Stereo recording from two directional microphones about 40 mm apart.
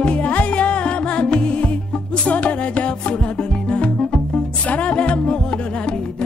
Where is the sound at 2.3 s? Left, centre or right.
Left.